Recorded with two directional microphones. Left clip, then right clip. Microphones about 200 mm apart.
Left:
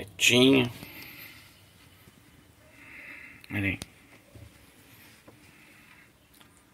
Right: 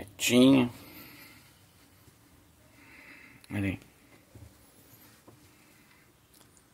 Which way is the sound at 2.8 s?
10° right (ahead or behind).